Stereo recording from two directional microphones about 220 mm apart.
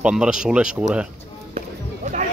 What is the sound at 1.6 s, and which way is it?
Music, 35° right (ahead or behind).